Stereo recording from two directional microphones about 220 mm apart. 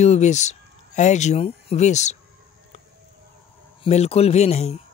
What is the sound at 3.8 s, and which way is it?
Speech, 30° left (ahead or behind).